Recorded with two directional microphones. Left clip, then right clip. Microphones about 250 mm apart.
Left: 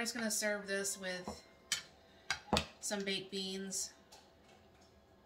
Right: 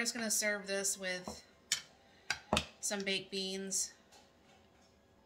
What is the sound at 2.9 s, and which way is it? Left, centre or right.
Speech, right.